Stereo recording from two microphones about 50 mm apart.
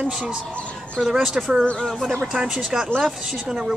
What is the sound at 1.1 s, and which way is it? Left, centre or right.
Speech, centre.